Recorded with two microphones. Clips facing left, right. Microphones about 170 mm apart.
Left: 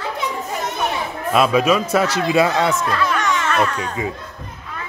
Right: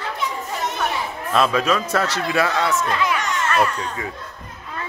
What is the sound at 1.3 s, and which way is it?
Speech, 10° left (ahead or behind).